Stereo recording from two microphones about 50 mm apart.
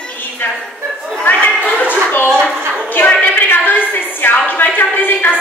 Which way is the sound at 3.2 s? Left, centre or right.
Left.